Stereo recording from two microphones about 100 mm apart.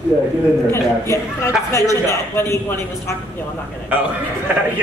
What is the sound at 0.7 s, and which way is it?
Speech, 25° left (ahead or behind).